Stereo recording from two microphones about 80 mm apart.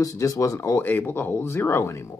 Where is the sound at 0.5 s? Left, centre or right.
Left.